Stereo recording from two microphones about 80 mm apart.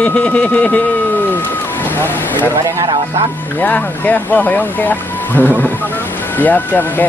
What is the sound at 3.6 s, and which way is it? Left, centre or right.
Speech, left.